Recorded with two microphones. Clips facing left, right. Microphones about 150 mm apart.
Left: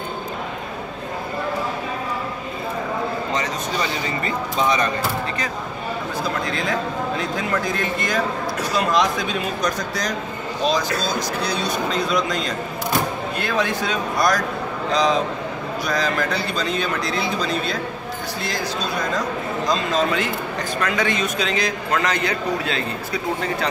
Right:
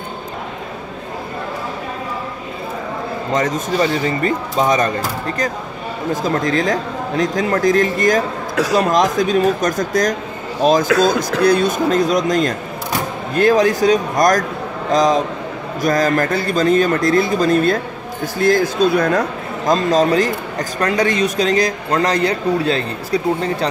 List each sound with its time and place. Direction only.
3.3 s a man's voice: 50° right (ahead or behind)
6.2 s a man's voice: 45° right (ahead or behind)